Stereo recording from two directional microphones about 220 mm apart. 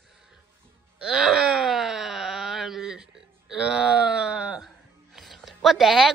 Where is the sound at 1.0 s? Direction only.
Centre (ahead or behind).